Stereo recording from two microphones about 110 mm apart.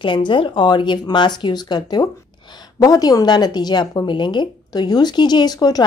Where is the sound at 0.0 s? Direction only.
50° left (ahead or behind).